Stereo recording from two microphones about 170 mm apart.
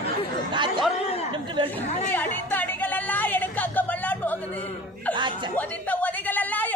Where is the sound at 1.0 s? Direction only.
40° left (ahead or behind).